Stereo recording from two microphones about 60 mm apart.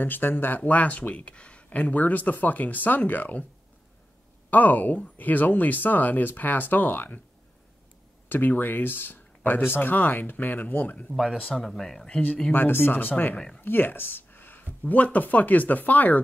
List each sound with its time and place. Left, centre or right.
0.0 s speech: left
4.5 s speech: left
8.3 s speech: left
11.5 s speech: centre
12.5 s speech: left; by 13.6 s centre
13.6 s speech: left